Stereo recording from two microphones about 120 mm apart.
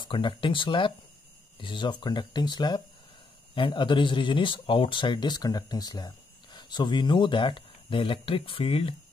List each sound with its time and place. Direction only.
0.0 s speech: 45° left (ahead or behind)